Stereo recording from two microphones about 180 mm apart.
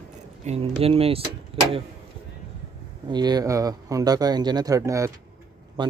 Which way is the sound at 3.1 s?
20° right (ahead or behind).